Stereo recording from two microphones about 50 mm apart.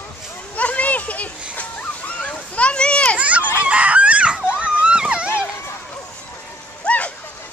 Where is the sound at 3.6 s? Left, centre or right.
Right.